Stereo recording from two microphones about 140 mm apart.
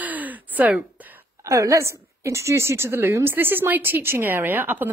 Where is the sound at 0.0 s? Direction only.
10° right (ahead or behind).